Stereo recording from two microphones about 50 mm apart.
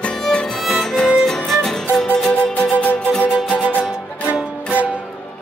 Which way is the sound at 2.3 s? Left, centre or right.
Left.